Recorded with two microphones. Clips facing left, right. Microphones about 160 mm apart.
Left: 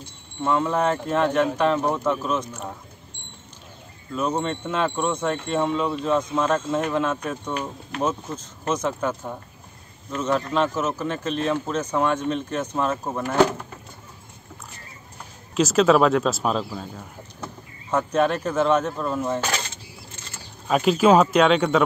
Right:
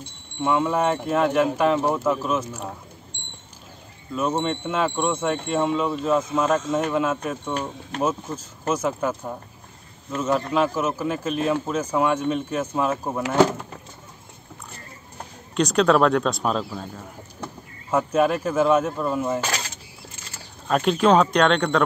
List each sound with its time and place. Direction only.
0.4 s speech: 5° right (ahead or behind)
3.1 s a sound: 90° right
4.1 s speech: 5° right (ahead or behind)
15.5 s speech: centre (ahead or behind)
20.6 s speech: 5° left (ahead or behind)